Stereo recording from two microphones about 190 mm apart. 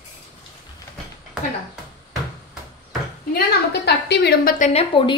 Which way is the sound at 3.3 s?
60° left (ahead or behind).